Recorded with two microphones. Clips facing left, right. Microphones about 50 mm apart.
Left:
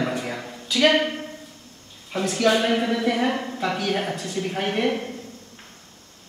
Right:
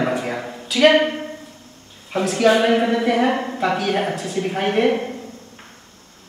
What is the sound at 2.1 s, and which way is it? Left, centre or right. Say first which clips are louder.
A woman's voice: right 4 dB; centre.